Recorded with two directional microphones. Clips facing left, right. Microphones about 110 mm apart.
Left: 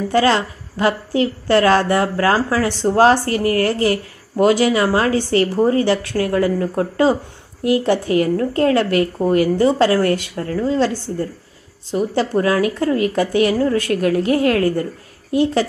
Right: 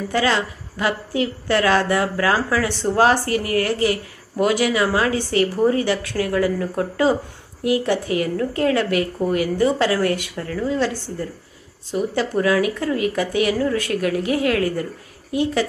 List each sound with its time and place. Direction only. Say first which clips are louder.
0.1 s a woman's voice: left 4 dB; 35° left (ahead or behind)